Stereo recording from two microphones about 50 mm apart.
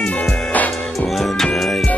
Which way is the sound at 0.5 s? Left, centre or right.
Left.